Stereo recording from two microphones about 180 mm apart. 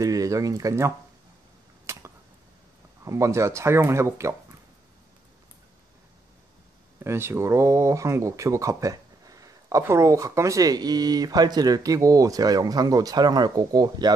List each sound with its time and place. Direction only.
0.0 s speech: 20° right (ahead or behind)
1.9 s a sound: 15° right (ahead or behind)
3.1 s speech: 15° right (ahead or behind)
7.0 s speech: 15° right (ahead or behind)